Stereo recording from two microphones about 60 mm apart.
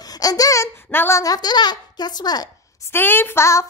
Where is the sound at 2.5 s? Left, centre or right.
Left.